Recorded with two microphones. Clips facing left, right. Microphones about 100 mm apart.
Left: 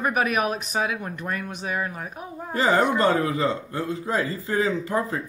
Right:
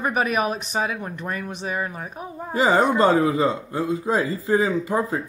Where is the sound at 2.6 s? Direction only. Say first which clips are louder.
Right 3 dB; 25° right (ahead or behind).